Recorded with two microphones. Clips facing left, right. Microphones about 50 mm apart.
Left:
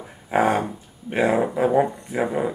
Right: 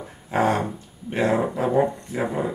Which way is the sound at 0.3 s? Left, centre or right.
Centre.